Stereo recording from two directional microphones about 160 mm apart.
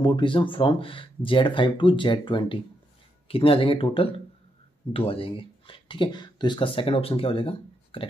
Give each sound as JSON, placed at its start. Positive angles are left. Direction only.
{"t": 0.0, "sound": "speech", "side_deg": 30}